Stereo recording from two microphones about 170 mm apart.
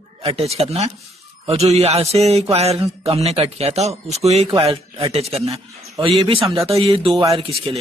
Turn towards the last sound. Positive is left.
turn(degrees=-35)  # may be behind; listen again after turning